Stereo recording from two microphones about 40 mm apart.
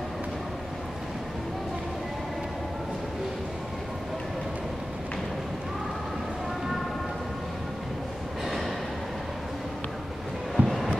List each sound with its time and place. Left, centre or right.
10.6 s vehicle: right